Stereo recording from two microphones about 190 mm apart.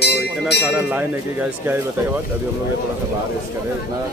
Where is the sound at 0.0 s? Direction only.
60° left (ahead or behind).